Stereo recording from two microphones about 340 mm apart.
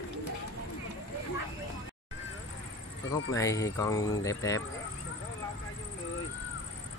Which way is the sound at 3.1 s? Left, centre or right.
Centre.